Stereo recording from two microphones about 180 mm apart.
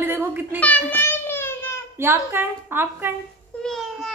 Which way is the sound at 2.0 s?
15° right (ahead or behind).